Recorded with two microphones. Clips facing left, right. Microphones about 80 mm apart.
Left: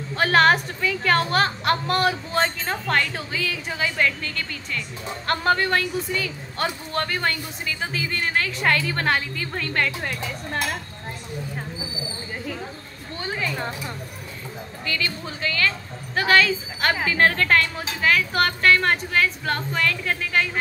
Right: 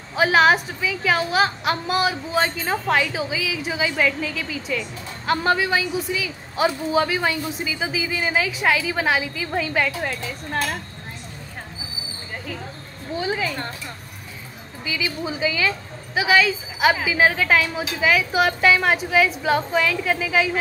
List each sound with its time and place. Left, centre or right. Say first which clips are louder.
0.1 s a woman's voice: right 1 dB; centre
13.1 s a sound: right 4 dB; centre
14.9 s a woman's voice: right 3 dB; centre